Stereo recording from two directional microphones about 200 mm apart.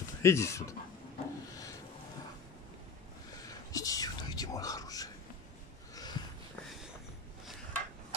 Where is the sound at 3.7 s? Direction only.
15° left (ahead or behind).